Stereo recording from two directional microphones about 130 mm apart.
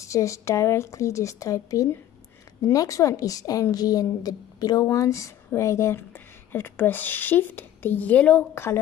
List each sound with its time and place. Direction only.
0.0 s a woman's voice: 25° left (ahead or behind)